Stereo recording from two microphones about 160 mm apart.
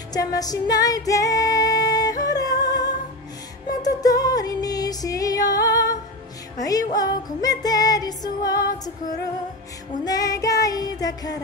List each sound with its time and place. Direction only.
0.1 s music: 25° left (ahead or behind)
10.0 s music: 20° left (ahead or behind)